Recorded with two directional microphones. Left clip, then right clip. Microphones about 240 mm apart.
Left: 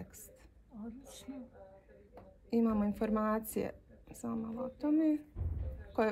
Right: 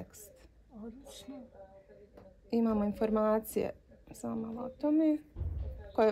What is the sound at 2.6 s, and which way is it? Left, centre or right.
Speech, right.